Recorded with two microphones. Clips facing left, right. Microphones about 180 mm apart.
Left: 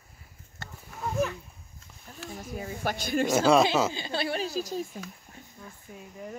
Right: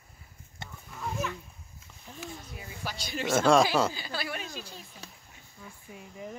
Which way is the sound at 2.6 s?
50° left (ahead or behind).